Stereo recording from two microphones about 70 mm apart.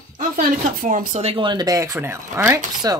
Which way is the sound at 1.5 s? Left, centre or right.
Right.